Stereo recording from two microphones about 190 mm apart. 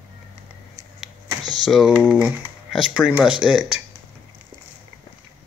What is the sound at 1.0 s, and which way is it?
Computer keyboard, centre (ahead or behind).